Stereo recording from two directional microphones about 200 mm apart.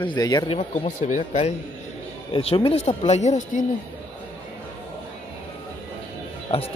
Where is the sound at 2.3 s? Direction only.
25° left (ahead or behind).